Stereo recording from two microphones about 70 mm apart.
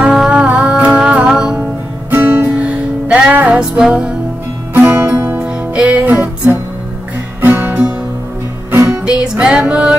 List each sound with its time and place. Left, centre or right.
0.3 s music: centre
2.0 s music: right
2.6 s music: centre
4.7 s music: right
5.4 s music: centre
8.8 s music: centre